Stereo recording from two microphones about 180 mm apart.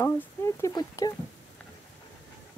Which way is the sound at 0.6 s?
20° left (ahead or behind).